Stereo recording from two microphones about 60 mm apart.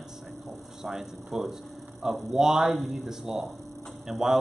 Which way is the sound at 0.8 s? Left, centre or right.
Centre.